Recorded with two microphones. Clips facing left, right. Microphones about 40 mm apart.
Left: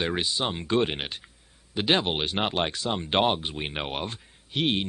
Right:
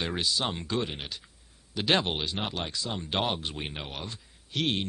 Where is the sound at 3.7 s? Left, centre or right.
Left.